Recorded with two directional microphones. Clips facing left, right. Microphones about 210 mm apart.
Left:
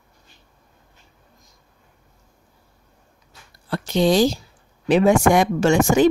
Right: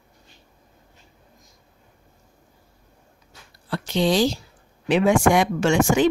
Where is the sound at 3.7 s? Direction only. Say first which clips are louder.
Left 3 dB; 45° left (ahead or behind).